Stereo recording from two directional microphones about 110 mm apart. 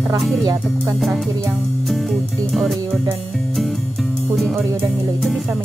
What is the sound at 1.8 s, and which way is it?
Music, centre (ahead or behind).